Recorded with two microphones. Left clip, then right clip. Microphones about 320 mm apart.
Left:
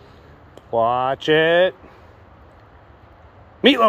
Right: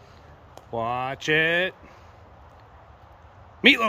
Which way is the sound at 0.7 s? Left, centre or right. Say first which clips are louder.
Left 9 dB; centre.